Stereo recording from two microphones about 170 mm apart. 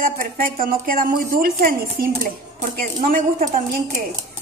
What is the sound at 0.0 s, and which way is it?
A woman's voice, 55° right (ahead or behind).